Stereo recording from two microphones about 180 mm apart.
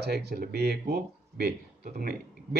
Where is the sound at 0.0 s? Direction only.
65° right (ahead or behind).